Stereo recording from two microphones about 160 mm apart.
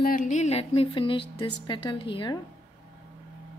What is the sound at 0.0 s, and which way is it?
A woman's voice, 60° left (ahead or behind).